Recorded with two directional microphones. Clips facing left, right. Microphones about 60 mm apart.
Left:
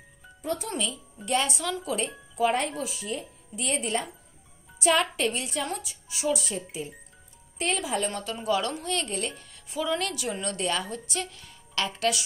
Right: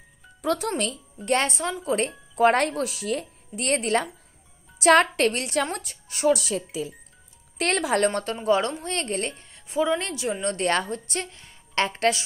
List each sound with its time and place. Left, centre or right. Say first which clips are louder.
0.4 s music: right 6 dB; right
0.7 s speech: right 5 dB; right
1.6 s speech: right 4 dB; right
2.0 s speech: right 5 dB; right
6.4 s speech: right 5 dB; right
7.5 s speech: right 5 dB; right
8.5 s speech: right 4 dB; right
9.5 s speech: right 7 dB; right
10.7 s speech: right 5 dB; right